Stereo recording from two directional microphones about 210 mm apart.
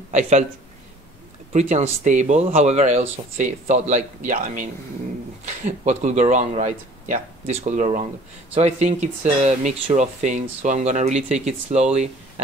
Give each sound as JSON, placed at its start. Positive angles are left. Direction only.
{"t": 0.1, "sound": "speech", "side_deg": -35}
{"t": 1.5, "sound": "speech", "side_deg": -35}